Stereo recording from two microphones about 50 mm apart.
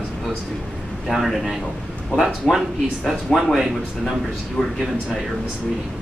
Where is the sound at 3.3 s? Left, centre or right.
Centre.